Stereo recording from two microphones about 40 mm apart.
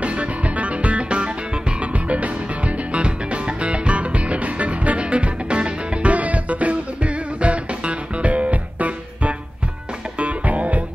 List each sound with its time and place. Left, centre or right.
0.0 s music: right